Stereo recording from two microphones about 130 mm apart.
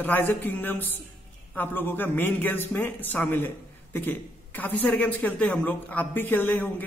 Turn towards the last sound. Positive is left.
turn(degrees=15)  # may be behind; listen again after turning